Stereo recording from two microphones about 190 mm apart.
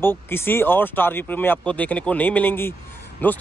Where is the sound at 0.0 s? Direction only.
10° left (ahead or behind).